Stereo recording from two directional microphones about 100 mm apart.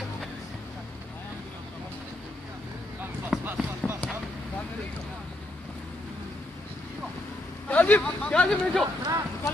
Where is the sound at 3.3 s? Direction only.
5° right (ahead or behind).